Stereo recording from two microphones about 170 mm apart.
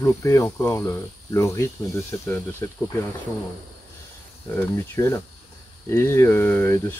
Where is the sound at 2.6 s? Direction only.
10° left (ahead or behind).